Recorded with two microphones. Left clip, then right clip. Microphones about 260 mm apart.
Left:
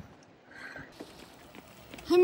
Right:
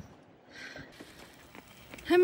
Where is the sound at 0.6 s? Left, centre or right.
Centre.